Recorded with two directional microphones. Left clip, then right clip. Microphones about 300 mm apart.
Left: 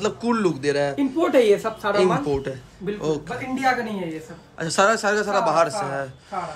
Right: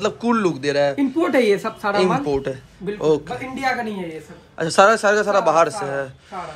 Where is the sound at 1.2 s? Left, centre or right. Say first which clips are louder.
Left 1 dB; right.